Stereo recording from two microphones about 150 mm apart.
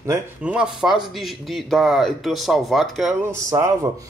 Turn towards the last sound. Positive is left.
turn(degrees=-20)  # may be behind; listen again after turning